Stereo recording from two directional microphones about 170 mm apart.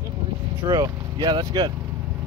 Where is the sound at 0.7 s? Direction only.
25° right (ahead or behind).